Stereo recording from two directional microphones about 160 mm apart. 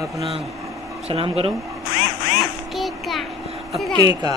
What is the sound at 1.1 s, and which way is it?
Speech, 40° right (ahead or behind).